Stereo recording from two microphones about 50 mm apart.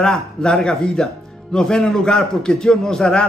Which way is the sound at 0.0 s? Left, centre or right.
Centre.